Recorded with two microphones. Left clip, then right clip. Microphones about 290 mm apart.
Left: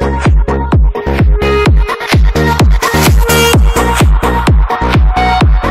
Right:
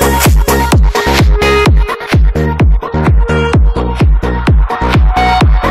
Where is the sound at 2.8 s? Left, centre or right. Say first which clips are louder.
Left 5 dB; left.